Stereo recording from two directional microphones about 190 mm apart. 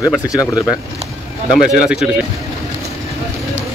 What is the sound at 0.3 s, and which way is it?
Speech, 20° left (ahead or behind).